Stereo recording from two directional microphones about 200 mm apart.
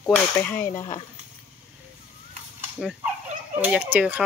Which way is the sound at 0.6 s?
35° left (ahead or behind).